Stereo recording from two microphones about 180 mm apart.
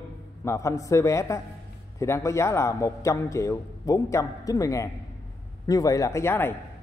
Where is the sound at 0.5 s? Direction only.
15° left (ahead or behind).